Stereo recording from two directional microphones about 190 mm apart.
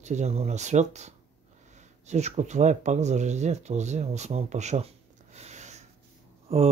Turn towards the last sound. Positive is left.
turn(degrees=-35)  # may be behind; listen again after turning